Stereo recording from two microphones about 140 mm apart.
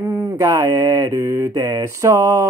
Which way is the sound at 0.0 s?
20° right (ahead or behind).